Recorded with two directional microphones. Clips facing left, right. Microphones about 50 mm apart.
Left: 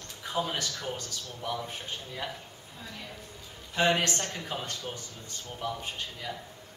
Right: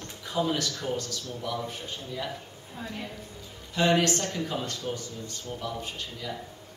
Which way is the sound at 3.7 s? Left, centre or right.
Centre.